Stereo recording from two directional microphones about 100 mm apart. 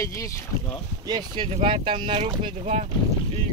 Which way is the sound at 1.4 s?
70° right (ahead or behind).